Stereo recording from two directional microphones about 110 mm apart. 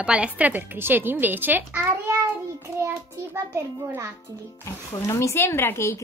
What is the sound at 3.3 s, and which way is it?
Speech, 25° right (ahead or behind).